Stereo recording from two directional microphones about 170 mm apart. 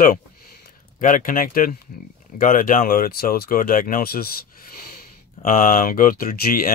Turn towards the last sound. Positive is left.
turn(degrees=55)  # may be behind; listen again after turning